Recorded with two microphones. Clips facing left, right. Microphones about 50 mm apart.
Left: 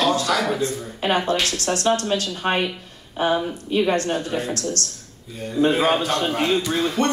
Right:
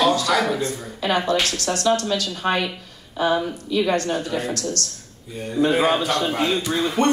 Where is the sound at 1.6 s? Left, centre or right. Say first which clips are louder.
Even; left.